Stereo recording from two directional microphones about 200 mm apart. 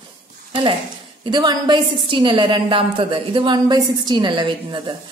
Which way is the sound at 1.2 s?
20° right (ahead or behind).